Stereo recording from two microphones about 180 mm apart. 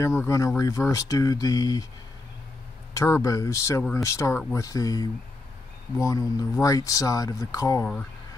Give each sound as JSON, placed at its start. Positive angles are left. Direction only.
{"t": 0.0, "sound": "speech", "side_deg": 15}
{"t": 2.9, "sound": "speech", "side_deg": 15}